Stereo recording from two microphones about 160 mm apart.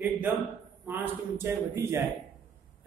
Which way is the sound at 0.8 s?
15° right (ahead or behind).